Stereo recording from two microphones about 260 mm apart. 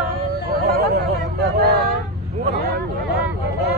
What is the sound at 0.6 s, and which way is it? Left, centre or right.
Hubbub, right.